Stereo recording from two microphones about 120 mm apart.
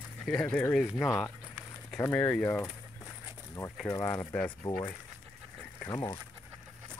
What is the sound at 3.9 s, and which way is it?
Speech, 20° left (ahead or behind).